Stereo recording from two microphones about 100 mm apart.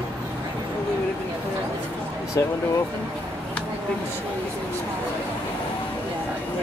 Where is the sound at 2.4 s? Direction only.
25° left (ahead or behind).